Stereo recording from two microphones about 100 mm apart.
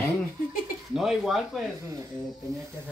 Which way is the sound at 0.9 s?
Centre (ahead or behind).